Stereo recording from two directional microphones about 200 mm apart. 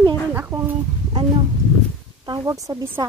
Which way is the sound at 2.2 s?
20° right (ahead or behind).